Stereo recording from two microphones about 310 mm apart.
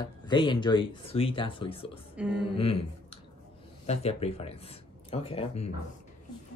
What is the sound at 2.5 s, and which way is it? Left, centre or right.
Speech, centre.